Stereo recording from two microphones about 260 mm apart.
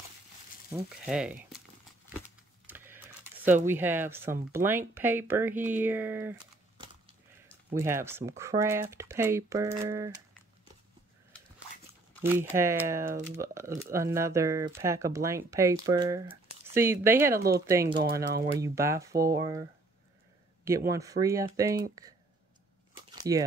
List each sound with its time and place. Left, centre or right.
0.7 s speech: centre
2.2 s computer keyboard: centre
3.6 s speech: centre
7.7 s speech: centre
12.2 s speech: centre
17.4 s speech: right
17.6 s speech: centre
20.6 s speech: centre
23.3 s speech: centre